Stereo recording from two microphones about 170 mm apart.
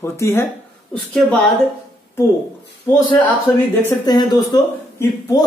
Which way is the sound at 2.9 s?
15° left (ahead or behind).